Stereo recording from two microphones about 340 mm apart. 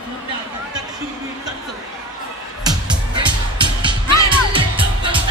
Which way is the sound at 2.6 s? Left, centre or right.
Centre.